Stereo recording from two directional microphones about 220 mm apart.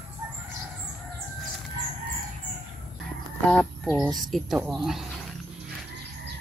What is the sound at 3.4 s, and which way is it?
Speech, centre (ahead or behind).